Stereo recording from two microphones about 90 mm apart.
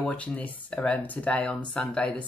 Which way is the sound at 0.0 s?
15° left (ahead or behind).